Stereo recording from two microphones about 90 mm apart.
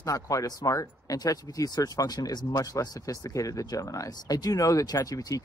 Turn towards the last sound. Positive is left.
turn(degrees=40)  # may be behind; listen again after turning